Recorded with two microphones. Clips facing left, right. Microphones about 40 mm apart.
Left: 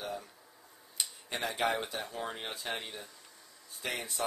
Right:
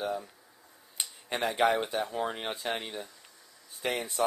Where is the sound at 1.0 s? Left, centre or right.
Right.